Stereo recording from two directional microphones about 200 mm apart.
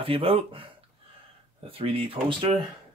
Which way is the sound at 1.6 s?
30° right (ahead or behind).